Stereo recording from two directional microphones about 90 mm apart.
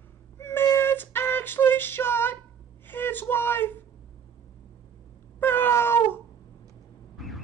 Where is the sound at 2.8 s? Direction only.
25° left (ahead or behind).